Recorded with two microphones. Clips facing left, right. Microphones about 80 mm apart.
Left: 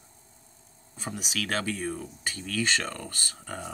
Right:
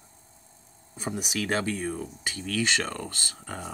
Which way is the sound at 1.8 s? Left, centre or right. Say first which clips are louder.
Right 1 dB; centre.